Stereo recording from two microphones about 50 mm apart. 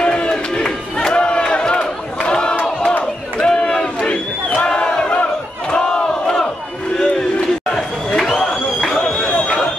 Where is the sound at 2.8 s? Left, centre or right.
Centre.